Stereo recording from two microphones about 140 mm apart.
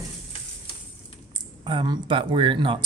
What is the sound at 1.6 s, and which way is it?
Speech, 35° right (ahead or behind).